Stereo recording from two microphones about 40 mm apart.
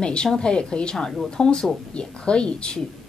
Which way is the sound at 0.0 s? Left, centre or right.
Left.